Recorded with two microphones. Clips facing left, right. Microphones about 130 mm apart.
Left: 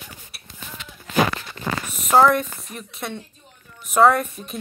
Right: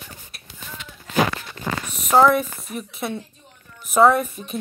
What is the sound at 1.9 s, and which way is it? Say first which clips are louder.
A woman's voice: even; centre (ahead or behind).